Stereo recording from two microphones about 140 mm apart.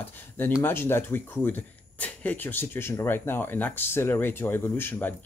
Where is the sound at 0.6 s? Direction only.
15° left (ahead or behind).